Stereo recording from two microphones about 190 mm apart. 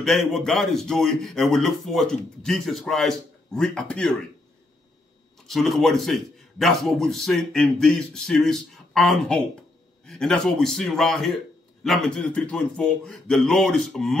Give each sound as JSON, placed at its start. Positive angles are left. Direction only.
{"t": 0.0, "sound": "speech", "side_deg": 0}
{"t": 5.5, "sound": "speech", "side_deg": 0}